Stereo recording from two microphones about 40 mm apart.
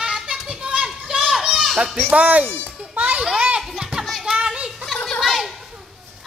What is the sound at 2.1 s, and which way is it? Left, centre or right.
Speech, right.